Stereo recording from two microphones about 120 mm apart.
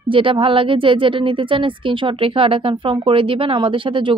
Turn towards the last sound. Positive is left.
turn(degrees=-45)  # may be behind; listen again after turning